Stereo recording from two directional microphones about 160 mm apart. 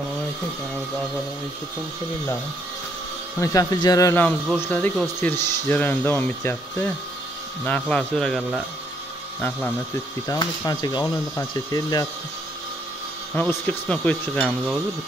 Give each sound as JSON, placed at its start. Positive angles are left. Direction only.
{"t": 3.3, "sound": "speech", "side_deg": 25}
{"t": 4.2, "sound": "speech", "side_deg": 10}
{"t": 10.2, "sound": "speech", "side_deg": 20}
{"t": 13.3, "sound": "speech", "side_deg": 10}